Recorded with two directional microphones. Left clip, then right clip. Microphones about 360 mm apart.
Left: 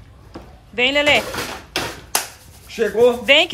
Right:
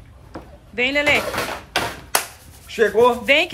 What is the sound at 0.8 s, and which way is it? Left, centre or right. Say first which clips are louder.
Speech: left 2 dB; centre.